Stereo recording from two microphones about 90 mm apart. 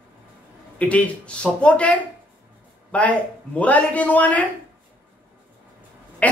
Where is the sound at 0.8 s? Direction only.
15° left (ahead or behind).